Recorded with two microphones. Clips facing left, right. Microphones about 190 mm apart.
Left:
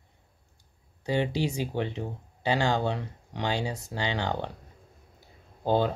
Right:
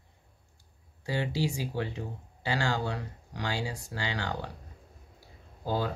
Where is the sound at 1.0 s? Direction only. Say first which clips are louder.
Left 4 dB; 20° left (ahead or behind).